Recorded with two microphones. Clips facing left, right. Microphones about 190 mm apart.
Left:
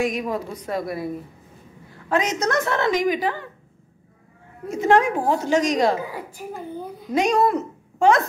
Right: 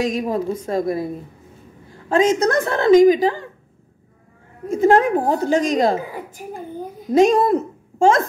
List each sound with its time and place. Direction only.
0.1 s a woman's voice: 30° right (ahead or behind)
2.0 s a woman's voice: 30° right (ahead or behind)
4.6 s a woman's voice: 35° right (ahead or behind)
7.1 s a woman's voice: 30° right (ahead or behind)